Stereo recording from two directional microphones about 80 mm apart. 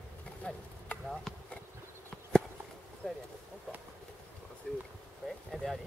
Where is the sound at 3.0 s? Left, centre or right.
Centre.